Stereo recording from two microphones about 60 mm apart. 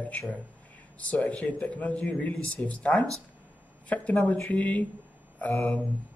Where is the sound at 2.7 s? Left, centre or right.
Centre.